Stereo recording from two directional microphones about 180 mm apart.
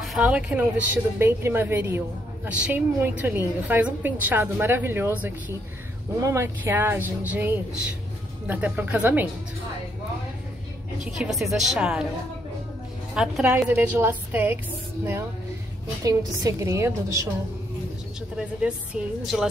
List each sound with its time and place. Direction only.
0.0 s a woman's voice: 5° right (ahead or behind)
11.1 s a woman's voice: centre (ahead or behind)
13.1 s a woman's voice: 5° right (ahead or behind)
16.0 s a woman's voice: 20° right (ahead or behind)
18.9 s a woman's voice: 5° right (ahead or behind)